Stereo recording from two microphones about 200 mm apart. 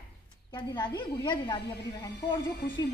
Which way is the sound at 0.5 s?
20° left (ahead or behind).